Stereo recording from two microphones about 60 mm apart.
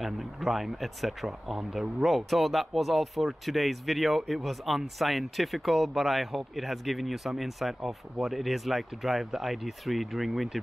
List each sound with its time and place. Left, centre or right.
0.0 s speech: centre